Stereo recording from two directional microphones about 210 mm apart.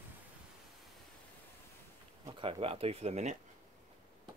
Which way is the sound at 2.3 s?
25° right (ahead or behind).